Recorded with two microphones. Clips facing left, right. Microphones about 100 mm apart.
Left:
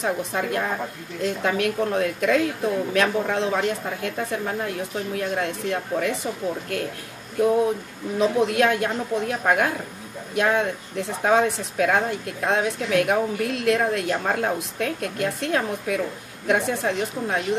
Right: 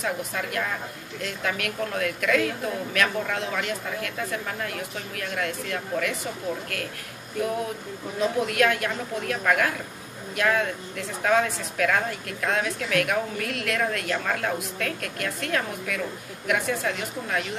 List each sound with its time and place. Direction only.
0.0 s speech: 25° left (ahead or behind)
8.2 s speech: 25° left (ahead or behind)